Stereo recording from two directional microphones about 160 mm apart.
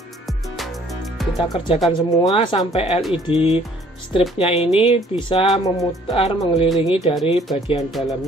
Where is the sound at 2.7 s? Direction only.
40° left (ahead or behind).